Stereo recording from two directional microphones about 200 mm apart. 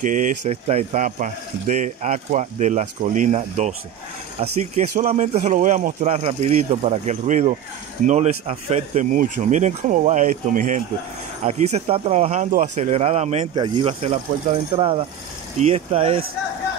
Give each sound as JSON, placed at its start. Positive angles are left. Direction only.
{"t": 0.0, "sound": "speech", "side_deg": -40}